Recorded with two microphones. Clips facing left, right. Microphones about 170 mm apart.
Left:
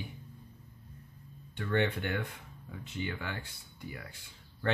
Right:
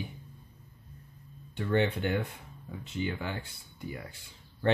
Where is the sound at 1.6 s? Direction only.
30° right (ahead or behind).